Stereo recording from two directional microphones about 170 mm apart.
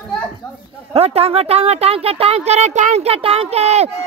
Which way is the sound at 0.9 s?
35° right (ahead or behind).